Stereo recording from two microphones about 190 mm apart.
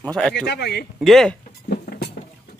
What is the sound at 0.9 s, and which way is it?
Speech, centre (ahead or behind).